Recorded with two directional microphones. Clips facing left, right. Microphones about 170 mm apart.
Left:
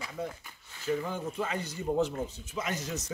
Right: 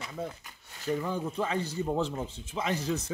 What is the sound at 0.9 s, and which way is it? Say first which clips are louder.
Speech: right 1 dB; 35° right (ahead or behind).